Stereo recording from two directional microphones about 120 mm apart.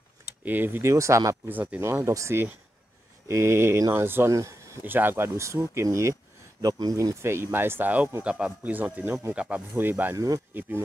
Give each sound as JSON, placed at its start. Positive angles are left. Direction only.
{"t": 0.5, "sound": "speech", "side_deg": -15}
{"t": 1.5, "sound": "speech", "side_deg": -15}